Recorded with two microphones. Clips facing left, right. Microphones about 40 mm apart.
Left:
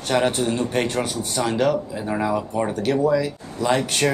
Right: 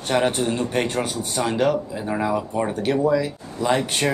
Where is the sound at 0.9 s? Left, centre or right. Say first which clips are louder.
Even; right.